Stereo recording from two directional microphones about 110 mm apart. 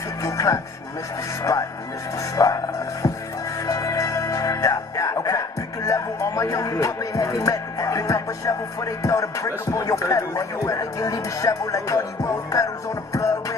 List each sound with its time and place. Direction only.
0.2 s music: 30° left (ahead or behind)
1.4 s speech: 30° left (ahead or behind)
3.6 s music: 30° left (ahead or behind)
5.9 s speech: 30° left (ahead or behind)